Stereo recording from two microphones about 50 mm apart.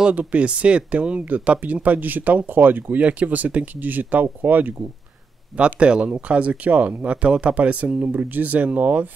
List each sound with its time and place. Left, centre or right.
0.1 s speech: right
5.6 s speech: right